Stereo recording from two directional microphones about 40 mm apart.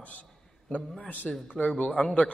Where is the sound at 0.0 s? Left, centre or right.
Left.